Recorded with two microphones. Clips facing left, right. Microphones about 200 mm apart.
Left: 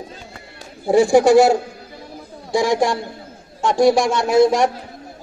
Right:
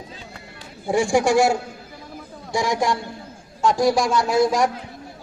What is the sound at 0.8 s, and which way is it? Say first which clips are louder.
Speech: left 6 dB; 35° left (ahead or behind).